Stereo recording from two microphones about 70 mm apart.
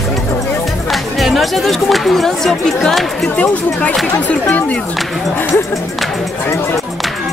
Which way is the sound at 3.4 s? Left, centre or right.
Left.